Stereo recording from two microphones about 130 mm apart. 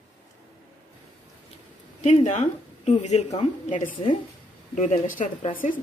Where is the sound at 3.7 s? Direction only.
85° left.